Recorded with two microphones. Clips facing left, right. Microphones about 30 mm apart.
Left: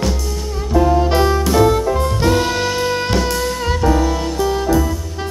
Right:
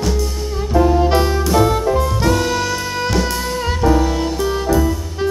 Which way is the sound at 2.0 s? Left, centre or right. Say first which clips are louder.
Left 1 dB; centre.